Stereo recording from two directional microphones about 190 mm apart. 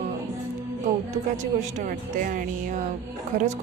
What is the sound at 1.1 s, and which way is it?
Speech, 40° right (ahead or behind).